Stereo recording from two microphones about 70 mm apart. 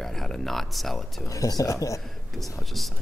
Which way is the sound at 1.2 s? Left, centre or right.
Left.